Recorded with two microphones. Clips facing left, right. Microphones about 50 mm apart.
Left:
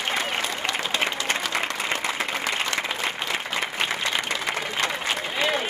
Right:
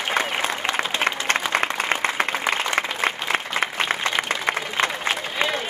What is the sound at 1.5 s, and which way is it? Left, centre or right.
Applause, right.